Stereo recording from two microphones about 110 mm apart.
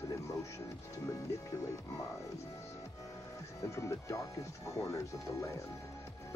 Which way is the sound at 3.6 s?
25° left (ahead or behind).